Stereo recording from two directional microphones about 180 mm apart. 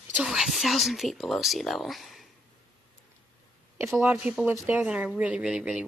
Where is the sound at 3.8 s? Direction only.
10° right (ahead or behind).